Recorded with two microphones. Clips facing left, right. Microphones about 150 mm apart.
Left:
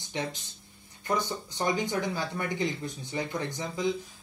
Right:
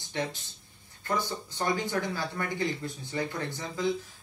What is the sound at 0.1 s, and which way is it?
Speech, 15° left (ahead or behind).